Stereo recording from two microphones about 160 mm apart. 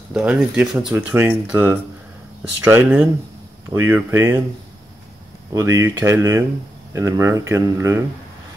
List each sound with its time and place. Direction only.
0.1 s speech: 5° right (ahead or behind)
5.5 s speech: 20° right (ahead or behind)